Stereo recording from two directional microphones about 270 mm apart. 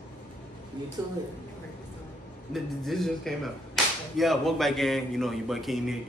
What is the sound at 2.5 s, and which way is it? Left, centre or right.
Speech, centre.